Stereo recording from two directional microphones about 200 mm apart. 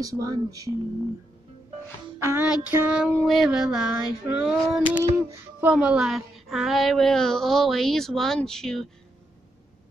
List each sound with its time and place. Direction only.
0.0 s music: 15° right (ahead or behind)
2.2 s music: 10° right (ahead or behind)
3.2 s child singing: centre (ahead or behind)